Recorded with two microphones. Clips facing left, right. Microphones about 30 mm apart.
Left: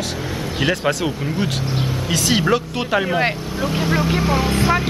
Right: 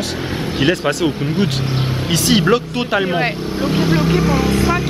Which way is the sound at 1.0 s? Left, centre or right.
Right.